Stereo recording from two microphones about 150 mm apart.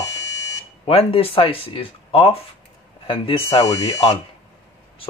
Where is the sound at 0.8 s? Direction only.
40° left (ahead or behind).